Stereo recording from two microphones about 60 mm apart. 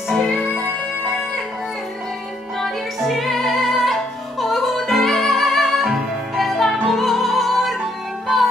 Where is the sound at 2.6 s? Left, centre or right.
Centre.